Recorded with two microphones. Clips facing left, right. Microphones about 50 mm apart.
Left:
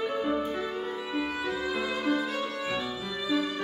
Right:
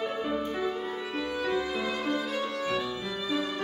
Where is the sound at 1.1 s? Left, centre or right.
Centre.